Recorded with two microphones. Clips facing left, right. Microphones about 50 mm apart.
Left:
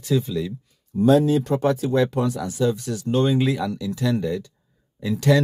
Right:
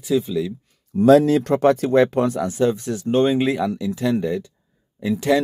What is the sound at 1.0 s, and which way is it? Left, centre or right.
Speech, right.